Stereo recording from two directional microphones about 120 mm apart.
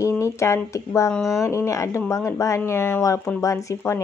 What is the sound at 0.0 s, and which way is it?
Speech, 25° left (ahead or behind).